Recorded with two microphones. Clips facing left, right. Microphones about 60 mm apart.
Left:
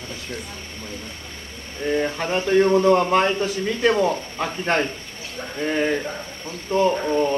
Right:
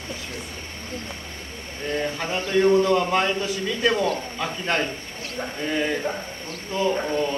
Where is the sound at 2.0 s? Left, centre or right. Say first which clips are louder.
Left 3 dB; left.